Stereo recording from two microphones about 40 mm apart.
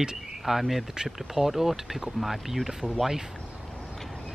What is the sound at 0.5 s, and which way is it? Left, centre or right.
Speech, centre.